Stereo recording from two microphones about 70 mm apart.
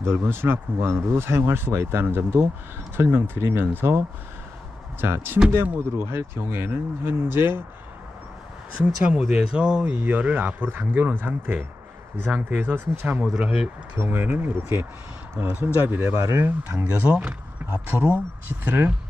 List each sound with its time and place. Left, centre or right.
0.0 s speech: right
5.0 s speech: right
9.5 s speech: centre
9.9 s speech: right
13.2 s speech: centre
13.9 s speech: right
16.2 s speech: right
16.7 s speech: centre